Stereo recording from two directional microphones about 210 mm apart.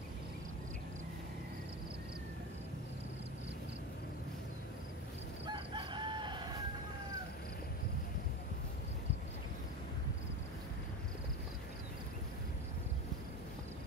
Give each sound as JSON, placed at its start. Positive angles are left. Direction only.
{"t": 5.5, "sound": "chicken", "side_deg": -25}